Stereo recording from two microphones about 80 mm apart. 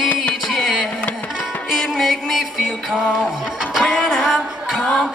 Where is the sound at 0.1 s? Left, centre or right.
Centre.